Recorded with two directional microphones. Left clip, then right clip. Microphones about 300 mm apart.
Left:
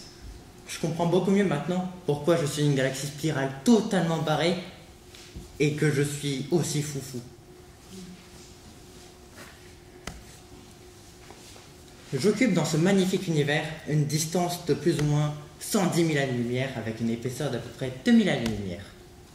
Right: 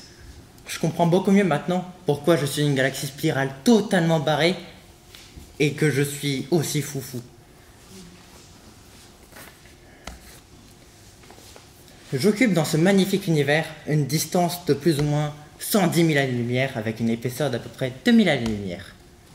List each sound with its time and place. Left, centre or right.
0.7 s speech: right
5.6 s speech: right
12.2 s speech: right